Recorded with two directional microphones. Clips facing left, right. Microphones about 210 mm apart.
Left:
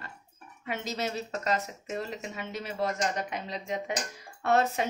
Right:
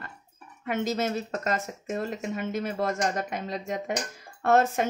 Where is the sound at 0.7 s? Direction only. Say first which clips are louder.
Right 6 dB; 50° right (ahead or behind).